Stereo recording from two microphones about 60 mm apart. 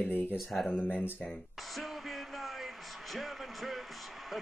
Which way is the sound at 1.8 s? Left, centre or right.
Centre.